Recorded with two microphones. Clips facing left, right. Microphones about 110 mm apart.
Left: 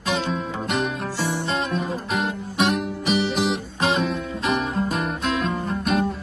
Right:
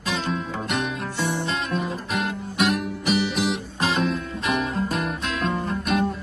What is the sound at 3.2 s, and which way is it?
Music, 35° left (ahead or behind).